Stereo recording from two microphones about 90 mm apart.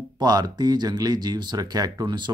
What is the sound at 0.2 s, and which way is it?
Speech, 50° right (ahead or behind).